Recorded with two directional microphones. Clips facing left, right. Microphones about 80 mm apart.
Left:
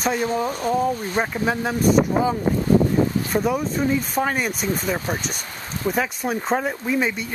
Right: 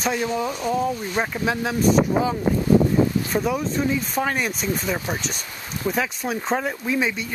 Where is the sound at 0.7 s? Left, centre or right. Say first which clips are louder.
Left 2 dB; left.